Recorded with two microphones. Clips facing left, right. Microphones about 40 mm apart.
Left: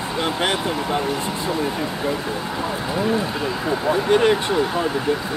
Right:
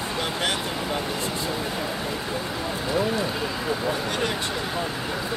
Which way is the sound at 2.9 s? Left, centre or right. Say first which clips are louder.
Left 2 dB; centre.